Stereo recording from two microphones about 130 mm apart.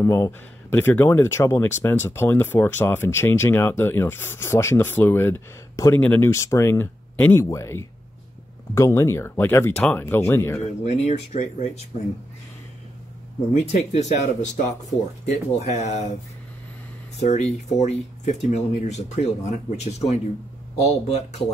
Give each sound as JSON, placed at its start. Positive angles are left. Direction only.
{"t": 0.0, "sound": "speech", "side_deg": 20}
{"t": 10.8, "sound": "speech", "side_deg": 60}
{"t": 13.5, "sound": "speech", "side_deg": 65}
{"t": 17.2, "sound": "speech", "side_deg": 60}